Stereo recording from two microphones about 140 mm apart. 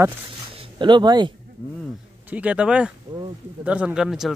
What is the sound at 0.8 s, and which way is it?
Speech, 35° right (ahead or behind).